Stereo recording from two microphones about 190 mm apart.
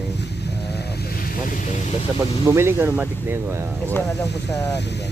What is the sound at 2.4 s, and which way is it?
Speech, 15° right (ahead or behind).